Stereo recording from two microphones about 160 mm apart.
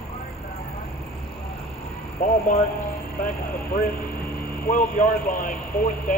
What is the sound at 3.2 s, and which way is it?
Speech, 60° left (ahead or behind).